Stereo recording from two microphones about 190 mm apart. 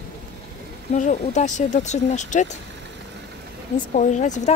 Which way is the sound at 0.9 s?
40° left (ahead or behind).